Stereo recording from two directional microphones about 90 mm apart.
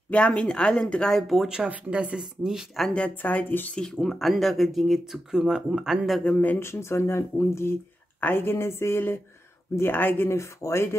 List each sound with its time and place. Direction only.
0.1 s speech: 15° left (ahead or behind); by 1.7 s 5° right (ahead or behind)
1.7 s speech: 15° right (ahead or behind)
2.9 s speech: 15° left (ahead or behind)
3.7 s speech: 5° left (ahead or behind)
6.2 s speech: 20° left (ahead or behind)
6.6 s speech: 30° left (ahead or behind)